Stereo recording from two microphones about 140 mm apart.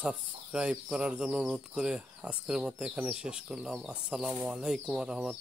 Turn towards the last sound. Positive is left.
turn(degrees=-5)  # may be behind; listen again after turning